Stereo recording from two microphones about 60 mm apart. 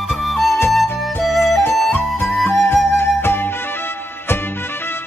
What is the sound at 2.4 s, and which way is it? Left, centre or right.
Music, left.